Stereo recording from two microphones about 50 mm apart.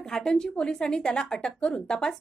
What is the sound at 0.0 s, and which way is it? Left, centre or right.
A woman's voice, centre.